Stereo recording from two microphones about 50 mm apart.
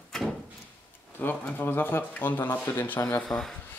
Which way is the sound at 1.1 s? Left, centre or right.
Left.